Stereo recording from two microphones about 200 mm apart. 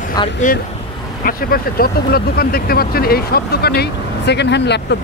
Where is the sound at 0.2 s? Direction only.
20° left (ahead or behind).